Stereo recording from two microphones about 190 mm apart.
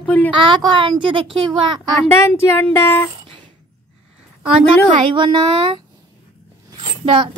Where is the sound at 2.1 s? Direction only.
15° left (ahead or behind).